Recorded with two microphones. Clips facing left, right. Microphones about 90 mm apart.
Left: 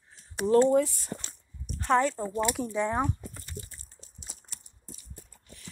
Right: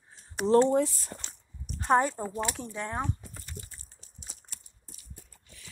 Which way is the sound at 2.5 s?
10° left (ahead or behind).